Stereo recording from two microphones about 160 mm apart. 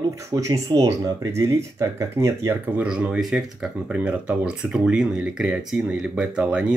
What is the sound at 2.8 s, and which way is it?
Speech, 5° right (ahead or behind).